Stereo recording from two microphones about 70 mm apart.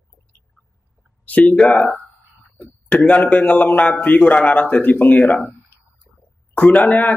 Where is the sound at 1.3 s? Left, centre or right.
Centre.